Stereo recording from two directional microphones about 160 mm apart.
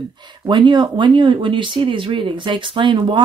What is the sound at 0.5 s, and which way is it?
Speech, 30° right (ahead or behind).